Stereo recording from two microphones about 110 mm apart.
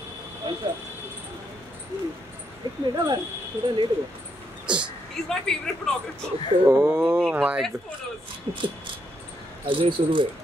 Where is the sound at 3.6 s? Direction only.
50° right (ahead or behind).